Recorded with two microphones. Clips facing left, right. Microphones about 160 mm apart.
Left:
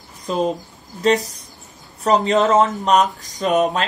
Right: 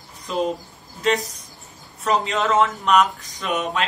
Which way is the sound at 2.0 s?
40° left (ahead or behind).